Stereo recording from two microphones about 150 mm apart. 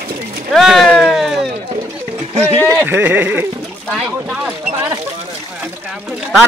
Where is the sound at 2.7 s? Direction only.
15° right (ahead or behind).